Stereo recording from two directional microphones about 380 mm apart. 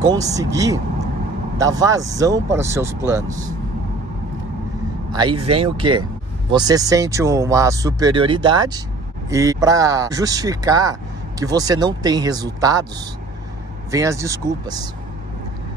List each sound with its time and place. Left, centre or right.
0.0 s speech: centre
5.1 s speech: centre
13.9 s speech: centre